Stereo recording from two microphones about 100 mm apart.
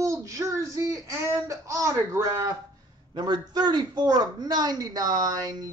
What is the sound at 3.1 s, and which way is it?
Speech, 45° right (ahead or behind).